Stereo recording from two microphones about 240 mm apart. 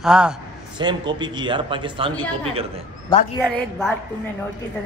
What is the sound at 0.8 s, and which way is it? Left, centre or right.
Speech, centre.